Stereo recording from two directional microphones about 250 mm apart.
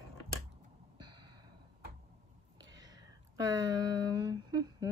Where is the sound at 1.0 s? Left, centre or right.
Centre.